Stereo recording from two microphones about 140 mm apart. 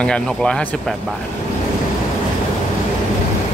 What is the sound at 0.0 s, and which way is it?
Speech, 5° left (ahead or behind).